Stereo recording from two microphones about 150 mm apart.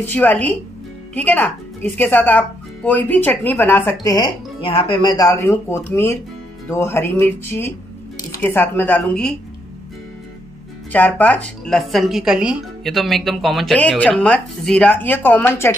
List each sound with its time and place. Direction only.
0.0 s speech: 10° left (ahead or behind)
4.0 s speech: 25° left (ahead or behind)
5.1 s speech: 20° left (ahead or behind)
10.9 s speech: 10° left (ahead or behind)